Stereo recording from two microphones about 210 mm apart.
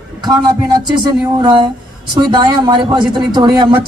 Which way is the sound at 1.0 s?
20° right (ahead or behind).